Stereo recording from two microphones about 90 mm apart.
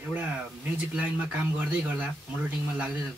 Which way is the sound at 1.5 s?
15° right (ahead or behind).